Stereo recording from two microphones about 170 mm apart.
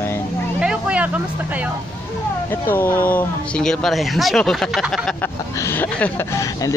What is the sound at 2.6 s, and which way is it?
Speech, 15° left (ahead or behind).